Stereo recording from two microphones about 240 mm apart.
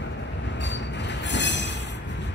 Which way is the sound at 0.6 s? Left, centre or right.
Left.